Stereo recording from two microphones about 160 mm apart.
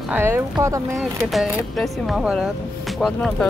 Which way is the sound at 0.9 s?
Centre (ahead or behind).